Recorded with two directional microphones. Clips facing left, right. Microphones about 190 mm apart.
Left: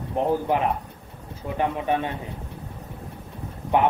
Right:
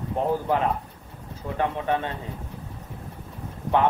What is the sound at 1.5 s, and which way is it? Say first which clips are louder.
Speech: left 1 dB; 15° left (ahead or behind).